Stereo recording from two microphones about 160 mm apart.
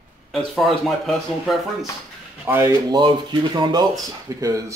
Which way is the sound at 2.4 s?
15° right (ahead or behind).